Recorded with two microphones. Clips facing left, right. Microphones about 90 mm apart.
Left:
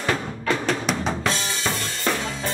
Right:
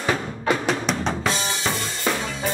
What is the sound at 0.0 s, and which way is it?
Music, 10° right (ahead or behind).